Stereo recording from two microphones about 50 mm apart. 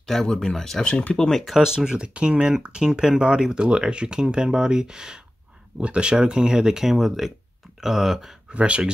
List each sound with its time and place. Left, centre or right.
0.0 s speech: centre
0.8 s speech: left
1.1 s speech: centre
1.4 s speech: centre
8.5 s speech: right